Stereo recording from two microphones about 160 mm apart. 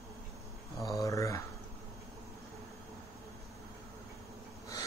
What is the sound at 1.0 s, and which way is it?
Speech, 20° left (ahead or behind).